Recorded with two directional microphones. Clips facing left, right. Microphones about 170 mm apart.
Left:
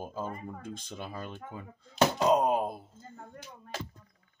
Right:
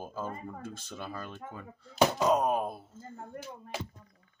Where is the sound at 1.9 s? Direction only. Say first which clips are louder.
Even; 10° right (ahead or behind).